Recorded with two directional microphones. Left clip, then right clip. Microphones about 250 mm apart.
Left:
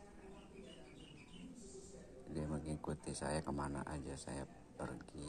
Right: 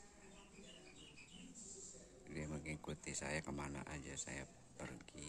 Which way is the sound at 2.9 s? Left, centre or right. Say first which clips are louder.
Left 3 dB; right.